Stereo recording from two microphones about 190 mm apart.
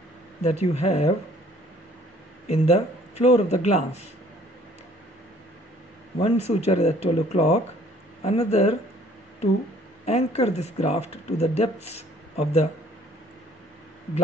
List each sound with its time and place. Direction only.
0.4 s speech: 35° left (ahead or behind)
2.4 s speech: 35° left (ahead or behind)
6.1 s speech: 35° left (ahead or behind)
10.0 s speech: 35° left (ahead or behind)